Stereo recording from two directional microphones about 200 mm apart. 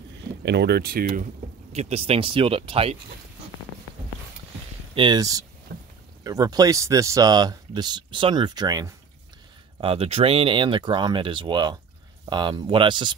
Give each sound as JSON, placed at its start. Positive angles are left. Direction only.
{"t": 0.5, "sound": "speech", "side_deg": -55}
{"t": 1.7, "sound": "speech", "side_deg": -35}
{"t": 4.9, "sound": "speech", "side_deg": -20}